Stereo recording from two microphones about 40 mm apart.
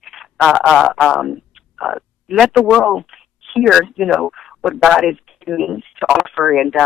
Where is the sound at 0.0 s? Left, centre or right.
Centre.